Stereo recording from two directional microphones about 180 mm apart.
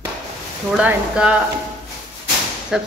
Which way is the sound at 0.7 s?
5° right (ahead or behind).